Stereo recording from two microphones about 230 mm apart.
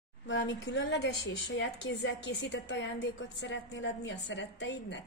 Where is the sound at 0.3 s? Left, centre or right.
Left.